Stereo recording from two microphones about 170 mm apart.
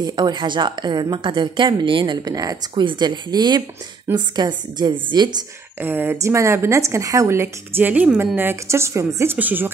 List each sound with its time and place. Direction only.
0.0 s a woman's voice: 25° right (ahead or behind)
5.8 s a woman's voice: 10° right (ahead or behind)